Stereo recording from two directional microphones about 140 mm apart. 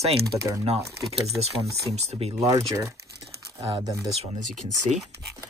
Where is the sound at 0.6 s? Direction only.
45° right (ahead or behind).